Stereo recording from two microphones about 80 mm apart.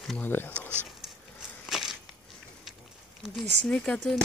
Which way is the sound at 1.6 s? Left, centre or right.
Centre.